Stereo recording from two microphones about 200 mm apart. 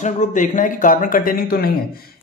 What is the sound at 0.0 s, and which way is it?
Speech, 40° left (ahead or behind).